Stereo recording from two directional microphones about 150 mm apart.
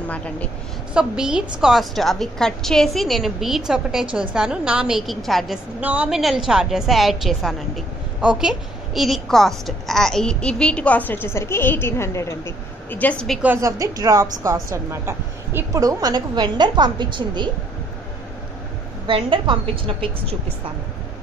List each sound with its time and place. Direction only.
0.1 s a woman's voice: 10° left (ahead or behind)
0.9 s a woman's voice: 5° right (ahead or behind)
5.8 s a woman's voice: 10° right (ahead or behind); by 13.4 s 5° left (ahead or behind)
13.6 s a woman's voice: 20° right (ahead or behind)
19.0 s a woman's voice: 35° right (ahead or behind)